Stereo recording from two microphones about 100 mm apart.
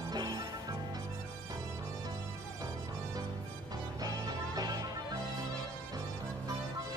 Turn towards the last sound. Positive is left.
turn(degrees=-40)  # may be behind; listen again after turning